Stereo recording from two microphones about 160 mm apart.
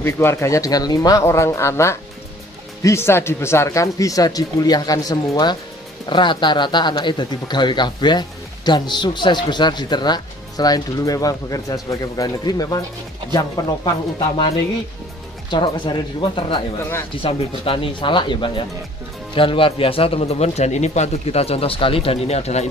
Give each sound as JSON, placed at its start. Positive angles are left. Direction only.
{"t": 0.0, "sound": "speech", "side_deg": 15}
{"t": 15.5, "sound": "speech", "side_deg": 30}